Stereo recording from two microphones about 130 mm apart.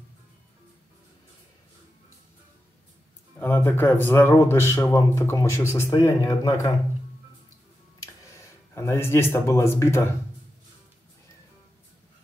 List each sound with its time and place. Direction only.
3.3 s a man's voice: 15° left (ahead or behind)
8.7 s a man's voice: 20° left (ahead or behind)